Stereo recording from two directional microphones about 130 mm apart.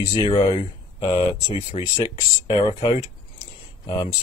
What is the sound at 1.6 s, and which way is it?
Speech, 55° left (ahead or behind).